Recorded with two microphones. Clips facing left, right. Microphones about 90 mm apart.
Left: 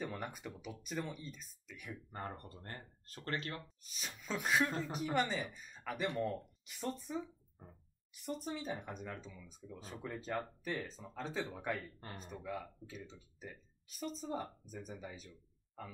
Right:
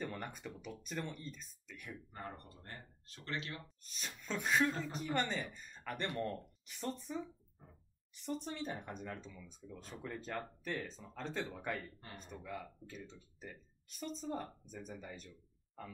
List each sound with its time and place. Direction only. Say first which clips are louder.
0.0 s speech: left 1 dB; 5° left (ahead or behind)
2.1 s speech: left 5 dB; 45° left (ahead or behind)
3.8 s speech: even; 5° left (ahead or behind)